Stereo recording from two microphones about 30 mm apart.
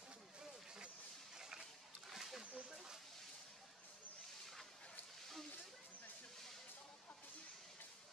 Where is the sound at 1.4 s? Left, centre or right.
Centre.